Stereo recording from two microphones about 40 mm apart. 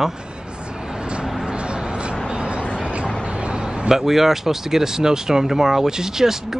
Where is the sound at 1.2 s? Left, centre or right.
Centre.